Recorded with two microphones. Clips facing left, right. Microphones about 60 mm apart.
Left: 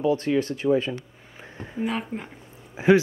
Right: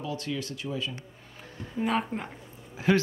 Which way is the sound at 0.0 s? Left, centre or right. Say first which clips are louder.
Left 11 dB; left.